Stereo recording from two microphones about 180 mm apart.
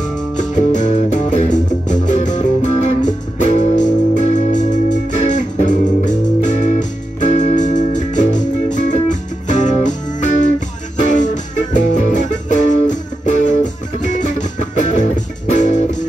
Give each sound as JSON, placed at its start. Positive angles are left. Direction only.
{"t": 0.4, "sound": "music", "side_deg": 45}